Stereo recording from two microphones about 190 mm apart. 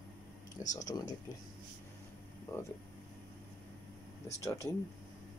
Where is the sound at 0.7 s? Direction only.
20° left (ahead or behind).